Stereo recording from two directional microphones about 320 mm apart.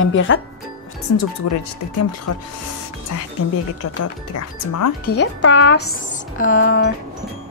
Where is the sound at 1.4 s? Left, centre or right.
Left.